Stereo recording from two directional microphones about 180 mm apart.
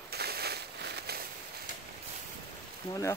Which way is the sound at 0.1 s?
60° right (ahead or behind).